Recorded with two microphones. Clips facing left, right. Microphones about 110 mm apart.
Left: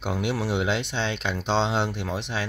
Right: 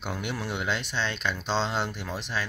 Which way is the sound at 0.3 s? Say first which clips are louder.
Left 5 dB; 25° left (ahead or behind).